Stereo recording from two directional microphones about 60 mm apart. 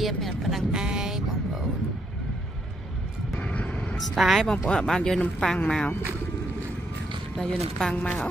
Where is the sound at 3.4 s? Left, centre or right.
Left.